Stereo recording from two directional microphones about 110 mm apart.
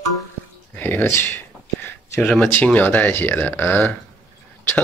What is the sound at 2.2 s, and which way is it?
Speech, 10° left (ahead or behind).